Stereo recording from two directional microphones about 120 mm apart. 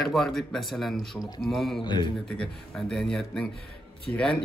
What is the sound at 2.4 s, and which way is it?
Speech, 5° left (ahead or behind).